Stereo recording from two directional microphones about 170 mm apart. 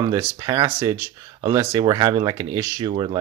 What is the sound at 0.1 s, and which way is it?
Speech, 20° right (ahead or behind).